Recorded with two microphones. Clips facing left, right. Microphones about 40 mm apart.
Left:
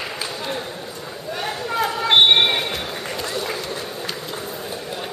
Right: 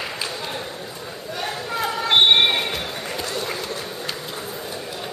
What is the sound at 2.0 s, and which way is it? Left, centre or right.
Basketball bounce, centre.